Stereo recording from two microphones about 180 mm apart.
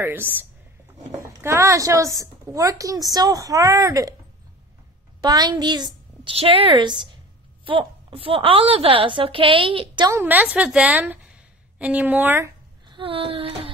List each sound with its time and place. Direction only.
0.0 s a woman's voice: 10° right (ahead or behind)
5.2 s a woman's voice: 25° right (ahead or behind)
10.1 s a woman's voice: 10° right (ahead or behind)
12.8 s a sound: 30° right (ahead or behind)